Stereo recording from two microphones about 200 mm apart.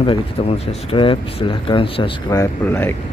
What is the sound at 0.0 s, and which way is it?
Speech, 30° left (ahead or behind).